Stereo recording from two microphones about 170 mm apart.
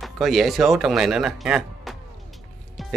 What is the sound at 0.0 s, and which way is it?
Speech, centre (ahead or behind).